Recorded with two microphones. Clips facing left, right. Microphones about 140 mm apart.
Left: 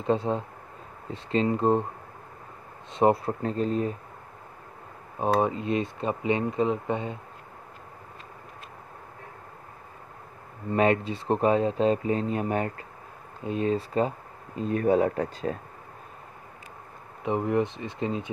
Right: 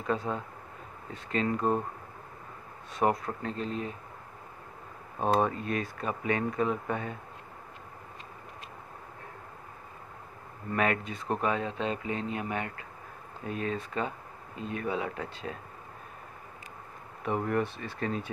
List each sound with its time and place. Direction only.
0.0 s speech: 30° left (ahead or behind)
2.9 s speech: 30° left (ahead or behind)
5.2 s speech: 20° left (ahead or behind)
10.7 s speech: 30° left (ahead or behind)
17.2 s speech: 20° left (ahead or behind)